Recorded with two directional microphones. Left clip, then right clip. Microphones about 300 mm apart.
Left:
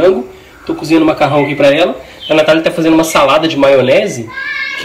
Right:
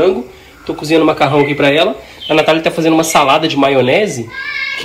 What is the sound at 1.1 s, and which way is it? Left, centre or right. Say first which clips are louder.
Speech: left 1 dB; centre.